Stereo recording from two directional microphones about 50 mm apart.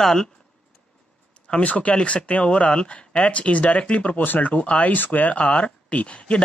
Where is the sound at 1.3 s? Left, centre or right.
Left.